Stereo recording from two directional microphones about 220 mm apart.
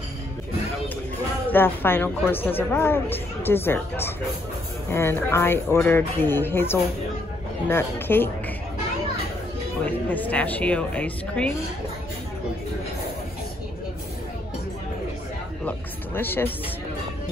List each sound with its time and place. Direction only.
1.5 s a woman's voice: 10° left (ahead or behind)
9.8 s a woman's voice: 10° left (ahead or behind)
16.2 s a woman's voice: 10° left (ahead or behind)